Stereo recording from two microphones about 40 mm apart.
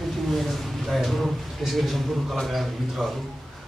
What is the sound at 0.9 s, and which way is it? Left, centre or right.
Speech, centre.